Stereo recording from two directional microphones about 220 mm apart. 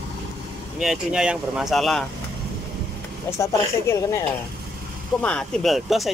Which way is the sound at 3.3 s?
15° left (ahead or behind).